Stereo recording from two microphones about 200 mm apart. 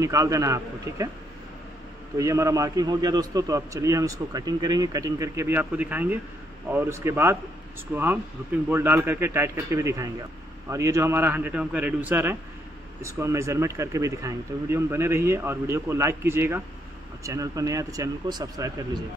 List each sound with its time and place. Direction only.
0.0 s a man's voice: 15° right (ahead or behind)
2.1 s a man's voice: 15° right (ahead or behind)